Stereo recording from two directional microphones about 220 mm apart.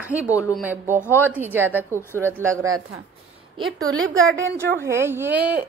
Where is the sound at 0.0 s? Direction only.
5° right (ahead or behind).